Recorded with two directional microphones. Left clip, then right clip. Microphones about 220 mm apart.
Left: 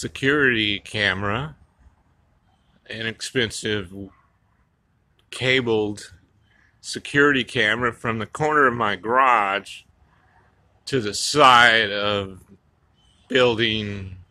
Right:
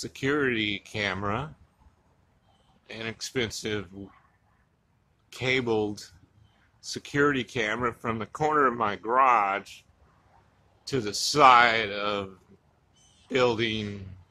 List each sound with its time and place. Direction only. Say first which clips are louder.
0.0 s speech: left 8 dB; 15° left (ahead or behind)
2.8 s speech: left 7 dB; 10° left (ahead or behind)
5.3 s speech: left 6 dB; 15° left (ahead or behind)